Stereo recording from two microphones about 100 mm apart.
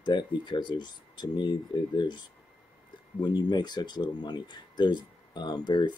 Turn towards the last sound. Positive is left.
turn(degrees=45)  # may be behind; listen again after turning